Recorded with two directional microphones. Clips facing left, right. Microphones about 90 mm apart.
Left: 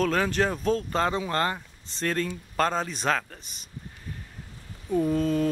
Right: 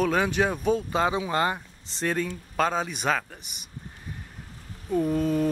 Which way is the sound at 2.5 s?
5° right (ahead or behind).